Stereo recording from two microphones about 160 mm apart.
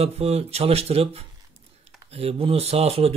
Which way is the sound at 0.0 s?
40° right (ahead or behind).